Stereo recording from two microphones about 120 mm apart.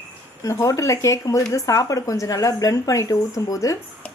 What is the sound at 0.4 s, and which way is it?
Speech, 25° left (ahead or behind).